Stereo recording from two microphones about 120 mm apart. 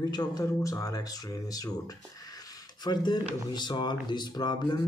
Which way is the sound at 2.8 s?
35° left (ahead or behind).